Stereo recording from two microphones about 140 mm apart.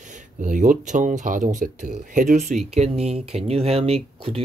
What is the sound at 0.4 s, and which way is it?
Speech, 65° right (ahead or behind).